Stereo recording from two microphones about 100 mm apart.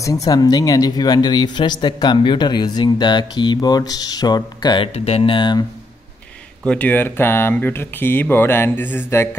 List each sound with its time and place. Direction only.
0.3 s speech: 40° left (ahead or behind)
4.9 s speech: 90° left
5.3 s speech: 50° left (ahead or behind)
6.6 s speech: 10° left (ahead or behind)